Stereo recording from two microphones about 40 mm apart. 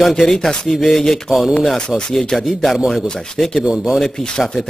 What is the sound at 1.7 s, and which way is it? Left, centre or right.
Speech, left.